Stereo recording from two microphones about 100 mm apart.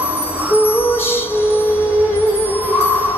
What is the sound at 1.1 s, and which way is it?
Music, 20° left (ahead or behind).